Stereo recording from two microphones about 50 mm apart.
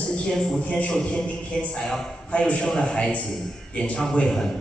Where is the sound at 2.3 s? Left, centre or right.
Left.